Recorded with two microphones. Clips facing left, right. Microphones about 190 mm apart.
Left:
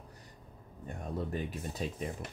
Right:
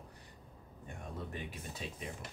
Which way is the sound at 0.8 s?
40° left (ahead or behind).